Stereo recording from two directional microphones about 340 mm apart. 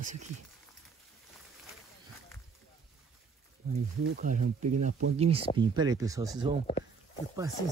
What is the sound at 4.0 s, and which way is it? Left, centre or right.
Speech, right.